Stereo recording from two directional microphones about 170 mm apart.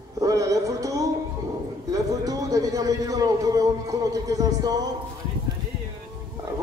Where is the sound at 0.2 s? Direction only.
20° right (ahead or behind).